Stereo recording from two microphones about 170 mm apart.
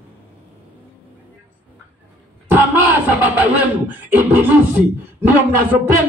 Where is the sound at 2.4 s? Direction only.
10° right (ahead or behind).